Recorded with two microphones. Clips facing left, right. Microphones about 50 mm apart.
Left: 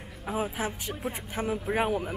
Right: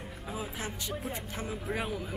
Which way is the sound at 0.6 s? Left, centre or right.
Centre.